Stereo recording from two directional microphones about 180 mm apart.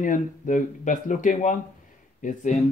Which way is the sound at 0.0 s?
45° left (ahead or behind).